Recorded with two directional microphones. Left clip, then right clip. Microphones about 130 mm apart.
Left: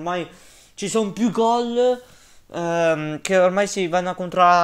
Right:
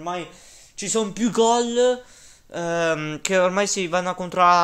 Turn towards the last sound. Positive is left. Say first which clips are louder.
# left 1 dB
turn(degrees=5)  # may be behind; listen again after turning